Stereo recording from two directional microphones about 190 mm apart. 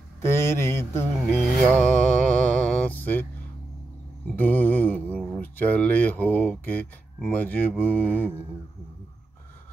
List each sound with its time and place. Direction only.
0.2 s mantra: 15° left (ahead or behind)
4.4 s speech: 10° left (ahead or behind)